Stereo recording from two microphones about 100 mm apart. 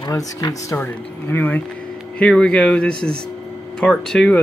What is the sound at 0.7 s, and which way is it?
Speech, 20° left (ahead or behind).